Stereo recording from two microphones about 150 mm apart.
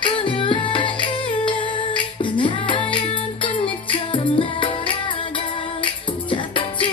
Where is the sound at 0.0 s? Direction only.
35° left (ahead or behind).